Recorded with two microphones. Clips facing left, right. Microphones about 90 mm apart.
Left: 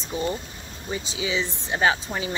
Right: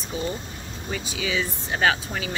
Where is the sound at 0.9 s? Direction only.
25° left (ahead or behind).